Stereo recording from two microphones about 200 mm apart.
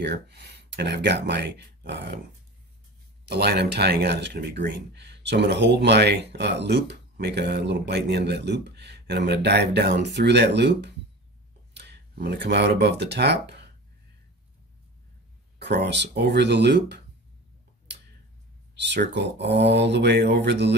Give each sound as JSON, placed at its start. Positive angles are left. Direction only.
{"t": 0.0, "sound": "speech", "side_deg": -60}
{"t": 3.3, "sound": "speech", "side_deg": -55}
{"t": 15.6, "sound": "speech", "side_deg": -60}
{"t": 18.8, "sound": "speech", "side_deg": -60}